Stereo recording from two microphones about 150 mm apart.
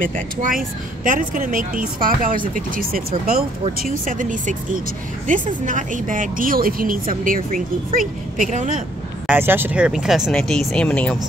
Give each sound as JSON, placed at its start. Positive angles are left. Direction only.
{"t": 0.0, "sound": "a woman's voice", "side_deg": -65}
{"t": 3.8, "sound": "a woman's voice", "side_deg": -65}
{"t": 5.7, "sound": "a woman's voice", "side_deg": -60}
{"t": 9.3, "sound": "speech", "side_deg": -15}